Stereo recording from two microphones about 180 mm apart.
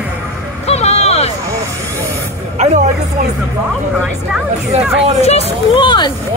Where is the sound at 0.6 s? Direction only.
35° left (ahead or behind).